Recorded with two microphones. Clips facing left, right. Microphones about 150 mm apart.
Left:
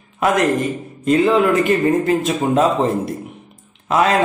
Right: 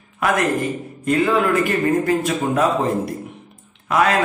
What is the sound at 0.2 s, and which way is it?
A man's voice, 25° left (ahead or behind).